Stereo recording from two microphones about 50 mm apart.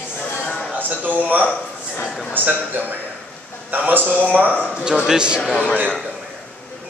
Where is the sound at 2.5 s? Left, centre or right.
Right.